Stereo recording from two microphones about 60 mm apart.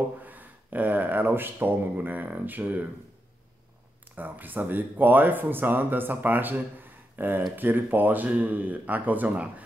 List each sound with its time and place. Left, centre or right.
0.2 s speech: right
4.1 s speech: right